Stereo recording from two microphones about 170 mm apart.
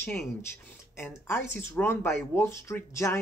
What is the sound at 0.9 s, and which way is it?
Speech, 15° left (ahead or behind).